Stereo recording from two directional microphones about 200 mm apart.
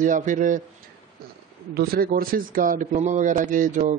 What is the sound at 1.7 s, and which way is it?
A man's voice, 50° right (ahead or behind).